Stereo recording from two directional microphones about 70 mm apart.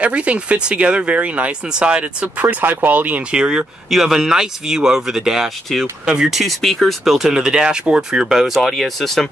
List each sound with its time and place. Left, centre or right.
0.0 s speech: centre